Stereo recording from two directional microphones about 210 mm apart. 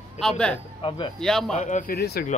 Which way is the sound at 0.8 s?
25° left (ahead or behind).